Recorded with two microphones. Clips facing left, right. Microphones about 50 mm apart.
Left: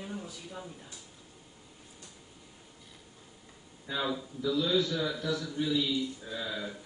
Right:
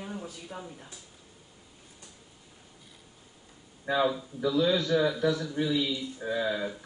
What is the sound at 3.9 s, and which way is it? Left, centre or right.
Speech, right.